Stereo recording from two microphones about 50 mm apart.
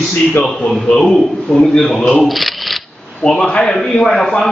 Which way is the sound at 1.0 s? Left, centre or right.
Centre.